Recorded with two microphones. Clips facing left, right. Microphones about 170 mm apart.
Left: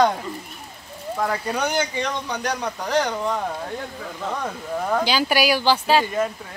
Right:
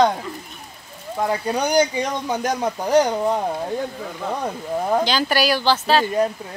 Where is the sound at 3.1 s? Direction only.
30° right (ahead or behind).